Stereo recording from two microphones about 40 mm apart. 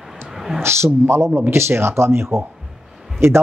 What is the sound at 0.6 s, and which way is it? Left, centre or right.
Speech, right.